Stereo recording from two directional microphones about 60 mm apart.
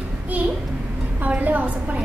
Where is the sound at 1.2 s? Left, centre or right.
Right.